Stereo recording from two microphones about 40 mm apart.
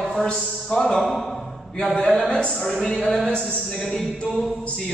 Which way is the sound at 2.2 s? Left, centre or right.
Left.